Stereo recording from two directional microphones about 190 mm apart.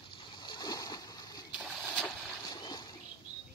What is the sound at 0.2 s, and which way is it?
Splash, 25° left (ahead or behind).